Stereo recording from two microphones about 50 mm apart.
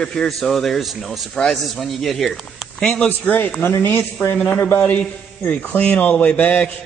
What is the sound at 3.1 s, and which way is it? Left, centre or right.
Speech, left.